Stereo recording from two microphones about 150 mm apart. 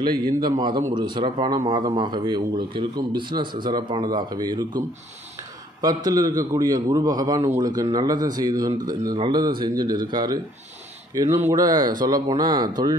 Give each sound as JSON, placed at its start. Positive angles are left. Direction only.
{"t": 0.0, "sound": "a man's voice", "side_deg": -25}
{"t": 6.0, "sound": "a man's voice", "side_deg": -25}